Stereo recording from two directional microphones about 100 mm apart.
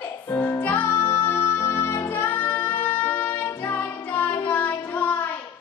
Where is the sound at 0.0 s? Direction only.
25° left (ahead or behind).